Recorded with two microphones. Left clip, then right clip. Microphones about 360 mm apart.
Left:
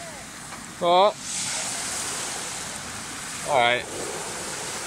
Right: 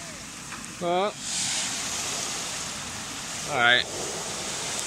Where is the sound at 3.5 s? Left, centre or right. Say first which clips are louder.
Even; centre.